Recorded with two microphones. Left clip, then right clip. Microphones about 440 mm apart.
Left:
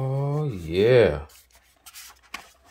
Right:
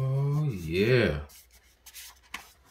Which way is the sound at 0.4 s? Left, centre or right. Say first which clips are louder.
Left 6 dB; centre.